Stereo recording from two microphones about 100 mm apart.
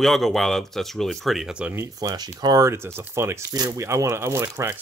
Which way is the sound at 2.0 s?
40° right (ahead or behind).